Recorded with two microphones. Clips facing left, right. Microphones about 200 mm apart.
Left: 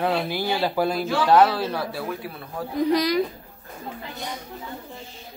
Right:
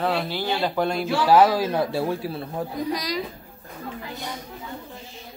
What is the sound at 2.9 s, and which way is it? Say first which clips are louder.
Speech: left 7 dB; 60° left (ahead or behind).